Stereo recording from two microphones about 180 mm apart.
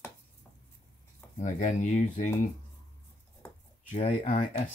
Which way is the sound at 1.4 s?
40° left (ahead or behind).